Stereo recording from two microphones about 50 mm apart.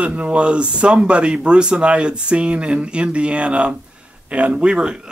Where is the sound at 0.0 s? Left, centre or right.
Right.